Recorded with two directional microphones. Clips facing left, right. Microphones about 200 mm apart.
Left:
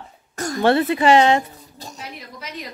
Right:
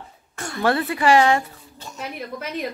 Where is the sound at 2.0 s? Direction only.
55° right (ahead or behind).